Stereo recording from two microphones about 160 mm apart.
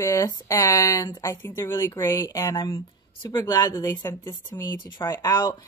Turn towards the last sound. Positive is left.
turn(degrees=25)  # may be behind; listen again after turning